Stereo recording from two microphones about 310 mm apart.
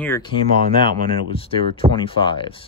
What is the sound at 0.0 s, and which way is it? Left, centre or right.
Speech, centre.